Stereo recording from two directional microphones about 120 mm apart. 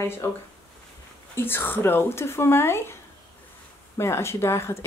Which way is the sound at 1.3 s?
20° left (ahead or behind).